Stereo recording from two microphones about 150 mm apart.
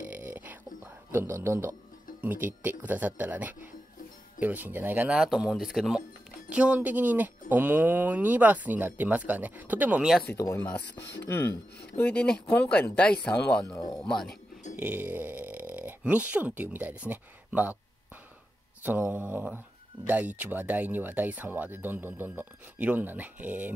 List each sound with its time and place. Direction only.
0.1 s a sound: 10° right (ahead or behind)
1.1 s speech: 15° right (ahead or behind)
10.3 s speech: 20° left (ahead or behind)
14.8 s speech: 10° right (ahead or behind)
18.8 s speech: 10° right (ahead or behind)